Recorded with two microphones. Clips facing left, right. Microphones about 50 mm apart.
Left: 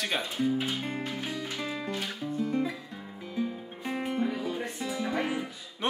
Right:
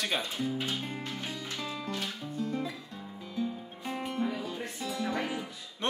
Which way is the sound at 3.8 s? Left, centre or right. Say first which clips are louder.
Left 3 dB; centre.